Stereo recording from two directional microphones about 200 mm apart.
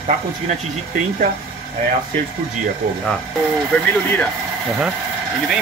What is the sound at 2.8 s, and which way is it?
Speech, 40° right (ahead or behind).